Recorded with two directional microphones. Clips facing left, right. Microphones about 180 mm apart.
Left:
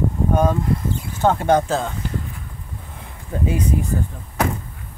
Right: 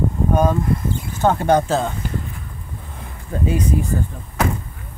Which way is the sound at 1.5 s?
5° right (ahead or behind).